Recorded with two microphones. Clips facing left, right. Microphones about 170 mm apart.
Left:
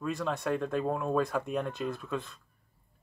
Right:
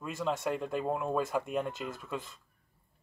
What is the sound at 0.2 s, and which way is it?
Speech, 20° right (ahead or behind).